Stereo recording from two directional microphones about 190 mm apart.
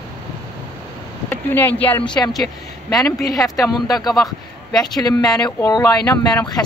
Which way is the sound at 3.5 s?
20° left (ahead or behind).